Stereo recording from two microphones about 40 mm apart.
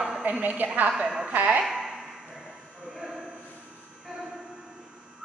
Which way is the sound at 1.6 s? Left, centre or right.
Centre.